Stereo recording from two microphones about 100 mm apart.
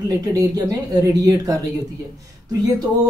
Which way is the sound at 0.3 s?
35° right (ahead or behind).